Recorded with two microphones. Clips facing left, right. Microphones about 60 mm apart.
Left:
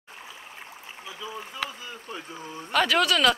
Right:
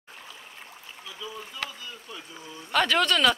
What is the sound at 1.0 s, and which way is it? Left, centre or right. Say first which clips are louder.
Speech: left 2 dB; left.